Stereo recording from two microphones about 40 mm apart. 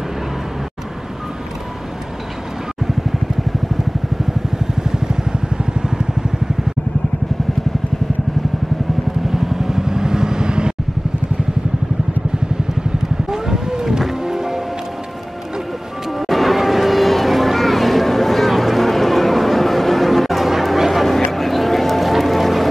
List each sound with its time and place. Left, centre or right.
9.3 s vehicle: centre
13.3 s wild animals: centre
14.2 s music: centre
16.1 s a sound: centre